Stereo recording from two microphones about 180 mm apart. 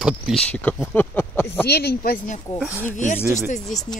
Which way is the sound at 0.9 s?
10° left (ahead or behind).